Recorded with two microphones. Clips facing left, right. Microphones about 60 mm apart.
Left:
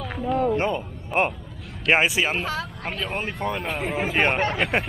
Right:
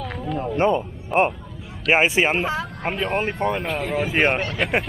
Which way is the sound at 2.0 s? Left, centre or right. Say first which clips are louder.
Right 3 dB; right.